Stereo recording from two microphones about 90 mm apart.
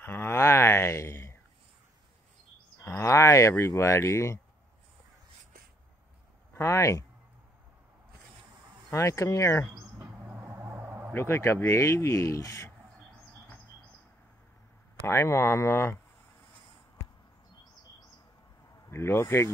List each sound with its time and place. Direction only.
0.0 s a sound: 25° left (ahead or behind)
3.0 s speech: 30° left (ahead or behind)
6.5 s speech: 30° left (ahead or behind)
8.9 s speech: 30° left (ahead or behind)
10.2 s a sound: 25° right (ahead or behind)
11.1 s speech: 25° left (ahead or behind)
15.0 s speech: 30° left (ahead or behind)
18.9 s speech: 30° left (ahead or behind)